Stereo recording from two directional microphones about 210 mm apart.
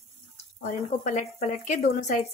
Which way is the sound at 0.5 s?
35° left (ahead or behind).